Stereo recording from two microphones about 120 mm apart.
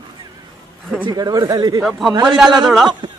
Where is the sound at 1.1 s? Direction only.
35° right (ahead or behind).